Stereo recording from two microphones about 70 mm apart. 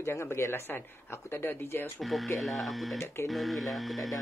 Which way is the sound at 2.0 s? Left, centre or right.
Centre.